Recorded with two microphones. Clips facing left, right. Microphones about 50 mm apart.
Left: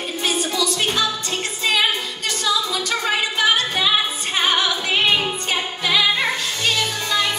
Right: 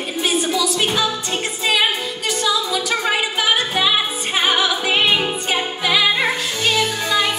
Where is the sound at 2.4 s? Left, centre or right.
Centre.